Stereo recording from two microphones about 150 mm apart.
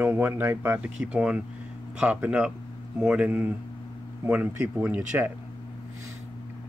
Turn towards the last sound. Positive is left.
turn(degrees=-10)  # may be behind; listen again after turning